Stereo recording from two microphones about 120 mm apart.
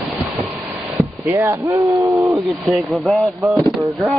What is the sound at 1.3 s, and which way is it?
Speech, 25° right (ahead or behind).